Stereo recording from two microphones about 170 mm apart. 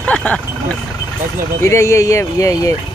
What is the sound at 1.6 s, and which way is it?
Speech, 15° left (ahead or behind).